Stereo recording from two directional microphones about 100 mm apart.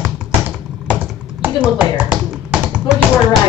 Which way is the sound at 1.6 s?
10° right (ahead or behind).